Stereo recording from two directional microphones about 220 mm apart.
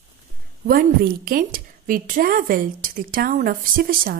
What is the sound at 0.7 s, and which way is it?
A woman's voice, 40° right (ahead or behind).